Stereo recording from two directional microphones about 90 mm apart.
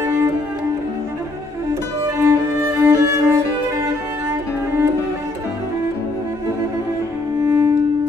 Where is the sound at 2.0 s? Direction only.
30° right (ahead or behind).